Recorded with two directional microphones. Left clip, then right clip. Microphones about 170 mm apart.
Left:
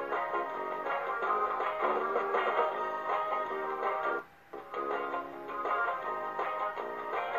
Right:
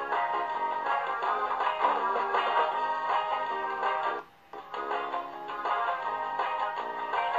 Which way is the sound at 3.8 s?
35° left (ahead or behind).